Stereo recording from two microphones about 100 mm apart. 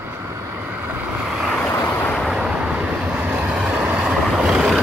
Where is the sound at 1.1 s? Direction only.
10° right (ahead or behind).